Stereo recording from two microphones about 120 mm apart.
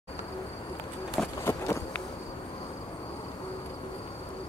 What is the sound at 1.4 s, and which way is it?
Run, 20° left (ahead or behind).